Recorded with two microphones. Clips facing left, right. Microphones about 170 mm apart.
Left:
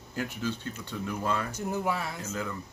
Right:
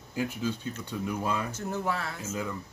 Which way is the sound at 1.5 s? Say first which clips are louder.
Left 1 dB; 15° left (ahead or behind).